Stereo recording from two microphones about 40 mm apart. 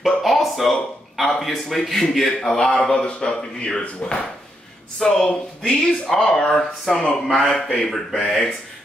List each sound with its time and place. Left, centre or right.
0.0 s a sound: centre
1.2 s a man's voice: centre; by 4.2 s left
4.9 s a man's voice: centre